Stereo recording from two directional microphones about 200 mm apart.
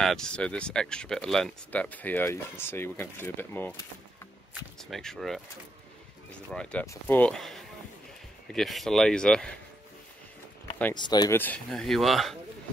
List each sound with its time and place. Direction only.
0.0 s speech: centre (ahead or behind)
6.5 s speech: 5° left (ahead or behind)
11.0 s speech: 20° left (ahead or behind)
11.3 s speech: 10° left (ahead or behind)